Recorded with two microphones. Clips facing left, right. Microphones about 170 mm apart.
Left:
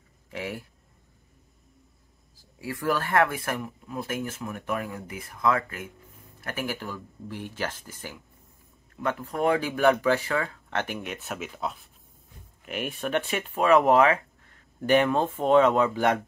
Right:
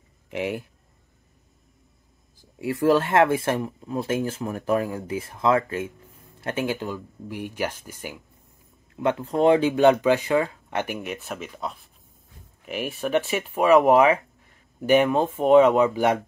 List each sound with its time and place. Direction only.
0.3 s speech: 20° right (ahead or behind)
2.6 s speech: 25° right (ahead or behind)